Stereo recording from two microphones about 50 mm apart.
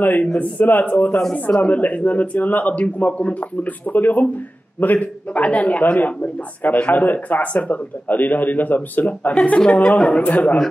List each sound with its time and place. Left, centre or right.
0.0 s speech: left
0.8 s a man's voice: left
9.3 s a man's voice: left